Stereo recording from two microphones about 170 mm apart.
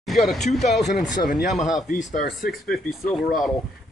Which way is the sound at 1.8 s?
45° left (ahead or behind).